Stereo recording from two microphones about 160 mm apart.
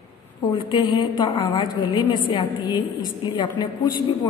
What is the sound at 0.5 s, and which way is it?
A woman's voice, 30° left (ahead or behind).